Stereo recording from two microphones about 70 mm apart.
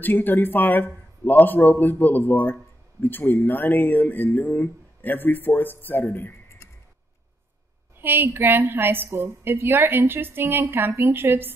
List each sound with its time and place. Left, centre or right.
0.0 s speech: left
8.0 s a woman's voice: right